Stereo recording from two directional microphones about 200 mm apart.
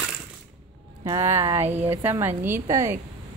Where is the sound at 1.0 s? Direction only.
15° right (ahead or behind).